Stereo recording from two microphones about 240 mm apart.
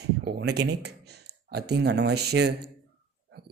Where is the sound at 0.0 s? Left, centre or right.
Right.